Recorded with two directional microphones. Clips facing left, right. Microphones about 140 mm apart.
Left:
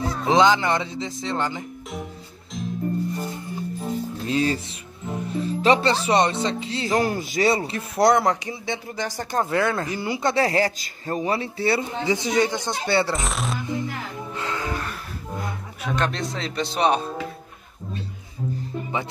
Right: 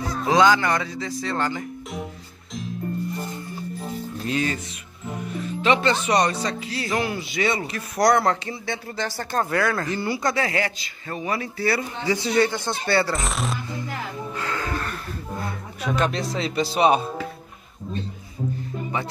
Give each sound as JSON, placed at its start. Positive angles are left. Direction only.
{"t": 0.0, "sound": "a man's voice", "side_deg": 25}
{"t": 4.3, "sound": "a man's voice", "side_deg": 30}
{"t": 6.9, "sound": "a man's voice", "side_deg": 40}
{"t": 10.3, "sound": "a man's voice", "side_deg": 35}
{"t": 13.1, "sound": "speech", "side_deg": 0}
{"t": 14.3, "sound": "music", "side_deg": 20}
{"t": 15.8, "sound": "speech", "side_deg": -5}